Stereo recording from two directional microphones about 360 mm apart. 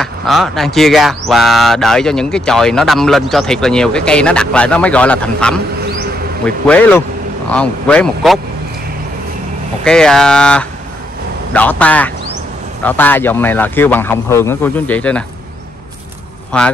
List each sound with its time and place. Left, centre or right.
0.0 s speech: centre
9.8 s speech: centre
16.5 s speech: centre